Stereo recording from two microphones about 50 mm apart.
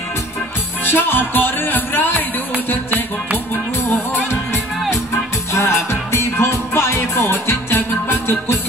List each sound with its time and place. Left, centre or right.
0.8 s music: left
5.5 s music: left